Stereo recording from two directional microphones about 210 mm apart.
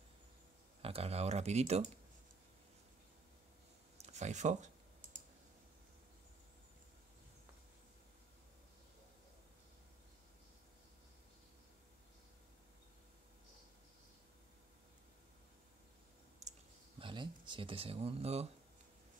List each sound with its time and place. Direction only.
0.8 s speech: 30° right (ahead or behind)
4.0 s speech: 35° right (ahead or behind)
5.0 s computer keyboard: 40° right (ahead or behind)
17.0 s speech: 20° right (ahead or behind)